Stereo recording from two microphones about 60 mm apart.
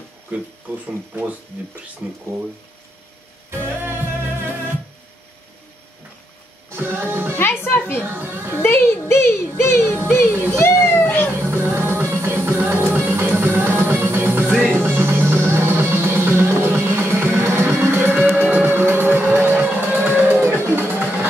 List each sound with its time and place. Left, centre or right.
3.5 s music: right
6.7 s music: right
7.3 s music: left
8.0 s speech: right
8.6 s speech: left
9.1 s speech: left
10.3 s speech: right
10.6 s a sound: left
11.3 s music: right